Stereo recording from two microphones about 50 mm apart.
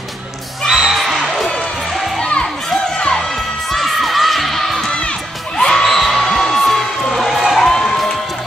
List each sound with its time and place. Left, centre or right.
0.7 s music: centre
3.0 s music: centre
3.7 s children shouting: centre
5.6 s music: centre
7.2 s a sound: centre
7.7 s a sound: centre